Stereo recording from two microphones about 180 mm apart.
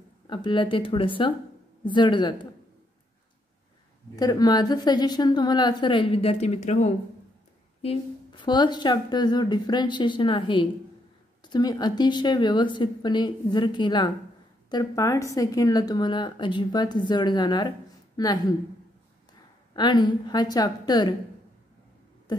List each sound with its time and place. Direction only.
0.3 s speech: 25° left (ahead or behind)
4.2 s speech: 20° left (ahead or behind); by 6.9 s 40° left (ahead or behind)
7.8 s speech: 30° left (ahead or behind)
19.7 s speech: 25° left (ahead or behind)